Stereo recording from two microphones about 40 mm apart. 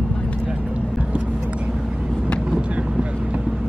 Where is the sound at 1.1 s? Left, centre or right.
Right.